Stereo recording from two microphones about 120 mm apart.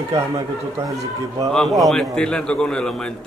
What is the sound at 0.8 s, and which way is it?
Speech, 25° right (ahead or behind).